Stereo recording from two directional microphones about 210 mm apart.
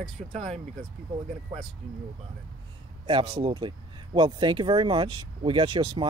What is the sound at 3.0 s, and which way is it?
Speech, 25° right (ahead or behind).